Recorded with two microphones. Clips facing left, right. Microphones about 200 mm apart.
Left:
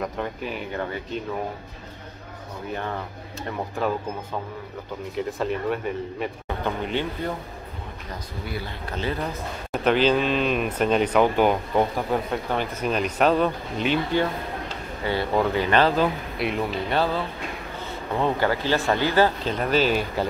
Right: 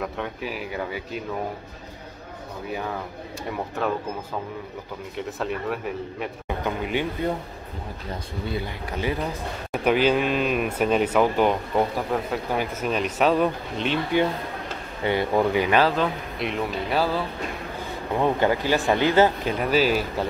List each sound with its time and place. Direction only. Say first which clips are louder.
0.0 s speech: left 1 dB; 5° right (ahead or behind)
2.7 s speech: even; 5° right (ahead or behind)
5.1 s speech: left 3 dB; centre (ahead or behind)
6.4 s a man's voice: right 3 dB; 10° right (ahead or behind)
8.1 s speech: right 3 dB; 25° right (ahead or behind)
8.9 s speech: right 1 dB; 15° right (ahead or behind)
15.0 s speech: right 2 dB; 15° right (ahead or behind)
16.0 s speech: left 2 dB; 5° left (ahead or behind)
18.1 s speech: right 2 dB; 15° right (ahead or behind)
19.6 s speech: even; 5° right (ahead or behind)